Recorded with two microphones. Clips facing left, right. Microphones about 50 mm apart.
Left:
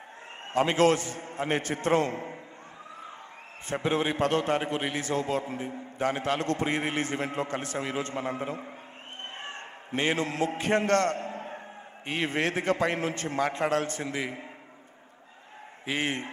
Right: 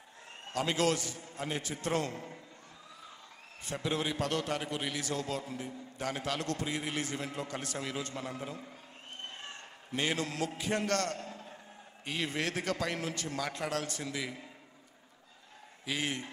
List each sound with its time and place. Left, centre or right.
0.5 s a man's voice: left
3.6 s a man's voice: left
9.4 s a sound: left
10.6 s a man's voice: left
15.8 s a man's voice: left